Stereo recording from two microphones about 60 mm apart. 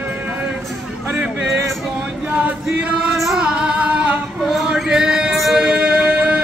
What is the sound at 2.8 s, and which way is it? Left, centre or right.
Speech, right.